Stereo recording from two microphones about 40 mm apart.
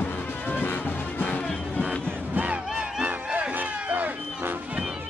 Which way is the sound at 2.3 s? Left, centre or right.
Right.